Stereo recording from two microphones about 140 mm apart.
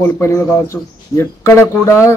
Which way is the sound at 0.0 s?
20° left (ahead or behind).